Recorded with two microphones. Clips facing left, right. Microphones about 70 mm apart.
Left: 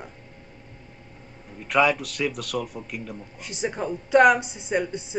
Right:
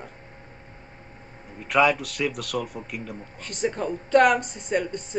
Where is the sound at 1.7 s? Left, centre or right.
Centre.